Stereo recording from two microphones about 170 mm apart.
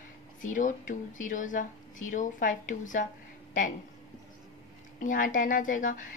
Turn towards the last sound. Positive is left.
turn(degrees=50)  # may be behind; listen again after turning